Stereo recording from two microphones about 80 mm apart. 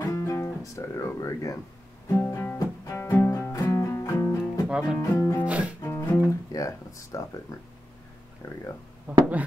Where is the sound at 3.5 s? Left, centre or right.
Left.